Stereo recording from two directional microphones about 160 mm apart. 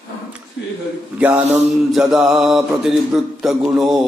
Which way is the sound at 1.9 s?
Centre (ahead or behind).